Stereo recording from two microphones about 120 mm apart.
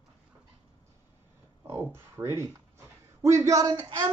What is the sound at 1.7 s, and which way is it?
Speech, 20° right (ahead or behind).